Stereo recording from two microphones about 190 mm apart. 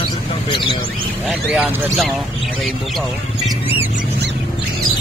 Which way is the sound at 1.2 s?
5° right (ahead or behind).